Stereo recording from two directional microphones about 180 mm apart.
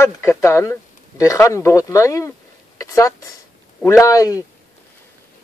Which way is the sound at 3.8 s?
15° left (ahead or behind).